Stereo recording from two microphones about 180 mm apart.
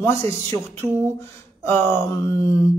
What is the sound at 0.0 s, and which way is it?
Speech, 15° left (ahead or behind).